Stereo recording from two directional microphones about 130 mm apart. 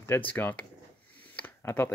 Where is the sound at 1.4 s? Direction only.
20° left (ahead or behind).